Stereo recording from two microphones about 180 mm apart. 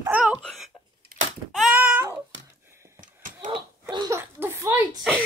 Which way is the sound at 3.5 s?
25° right (ahead or behind).